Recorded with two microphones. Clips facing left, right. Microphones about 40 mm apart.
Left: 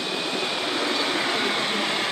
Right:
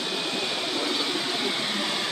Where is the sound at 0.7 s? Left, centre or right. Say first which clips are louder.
Left 4 dB; left.